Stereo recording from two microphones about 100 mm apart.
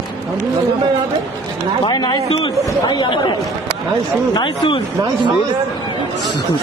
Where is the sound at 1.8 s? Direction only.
50° left (ahead or behind).